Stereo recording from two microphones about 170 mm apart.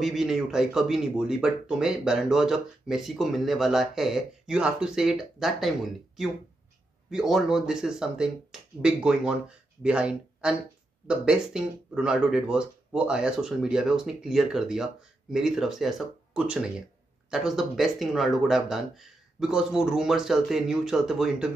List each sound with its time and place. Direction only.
0.0 s speech: centre (ahead or behind)